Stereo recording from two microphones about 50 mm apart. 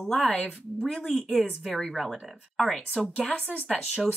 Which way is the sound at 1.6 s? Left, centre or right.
Centre.